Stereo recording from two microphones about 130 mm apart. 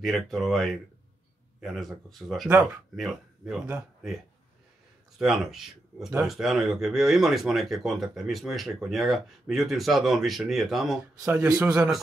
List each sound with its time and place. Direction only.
0.0 s speech: centre (ahead or behind)
5.2 s speech: 5° right (ahead or behind)
11.2 s speech: 25° right (ahead or behind)
11.7 s a man's voice: 5° right (ahead or behind)